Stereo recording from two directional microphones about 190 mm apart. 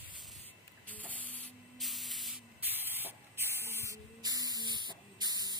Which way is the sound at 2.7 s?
10° right (ahead or behind).